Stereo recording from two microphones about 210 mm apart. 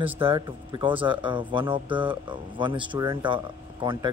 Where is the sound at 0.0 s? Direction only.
25° right (ahead or behind).